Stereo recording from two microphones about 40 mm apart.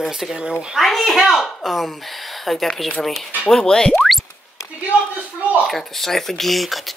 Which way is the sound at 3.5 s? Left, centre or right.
Centre.